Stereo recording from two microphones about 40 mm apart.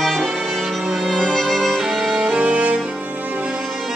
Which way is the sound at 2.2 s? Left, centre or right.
Right.